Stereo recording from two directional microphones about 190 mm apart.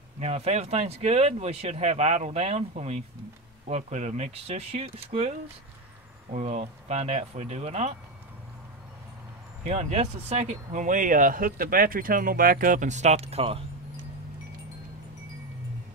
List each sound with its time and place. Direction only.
0.2 s speech: 35° right (ahead or behind)
6.3 s speech: 35° right (ahead or behind)
9.7 s speech: 35° right (ahead or behind)